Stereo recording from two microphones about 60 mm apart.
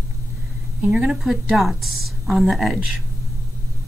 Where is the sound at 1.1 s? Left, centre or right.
Centre.